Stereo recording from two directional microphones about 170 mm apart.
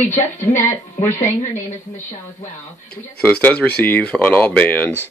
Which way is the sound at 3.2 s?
10° left (ahead or behind).